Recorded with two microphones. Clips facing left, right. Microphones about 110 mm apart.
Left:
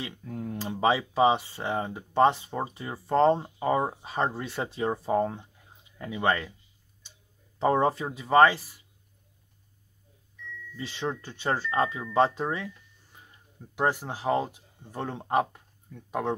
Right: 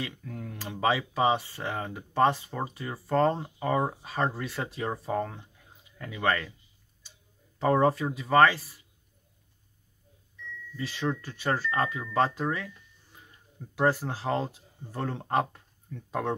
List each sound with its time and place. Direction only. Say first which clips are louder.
0.0 s speech: left 2 dB; 25° left (ahead or behind)
7.5 s speech: even; 20° left (ahead or behind)
10.8 s speech: right 1 dB; 25° left (ahead or behind)
13.7 s speech: right 1 dB; 15° left (ahead or behind)